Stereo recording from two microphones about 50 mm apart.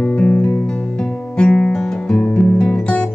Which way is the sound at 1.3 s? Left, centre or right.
Centre.